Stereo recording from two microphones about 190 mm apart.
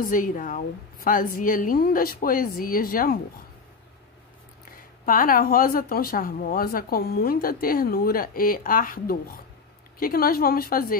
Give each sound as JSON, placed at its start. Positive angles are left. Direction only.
{"t": 0.0, "sound": "speech", "side_deg": 45}
{"t": 5.0, "sound": "speech", "side_deg": 50}